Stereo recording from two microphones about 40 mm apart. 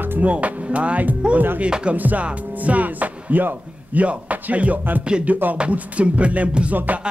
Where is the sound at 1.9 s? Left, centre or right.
Right.